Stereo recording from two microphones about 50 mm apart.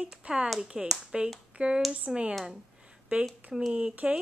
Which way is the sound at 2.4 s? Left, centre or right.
Centre.